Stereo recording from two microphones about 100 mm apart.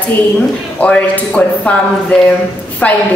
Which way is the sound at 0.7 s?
15° left (ahead or behind).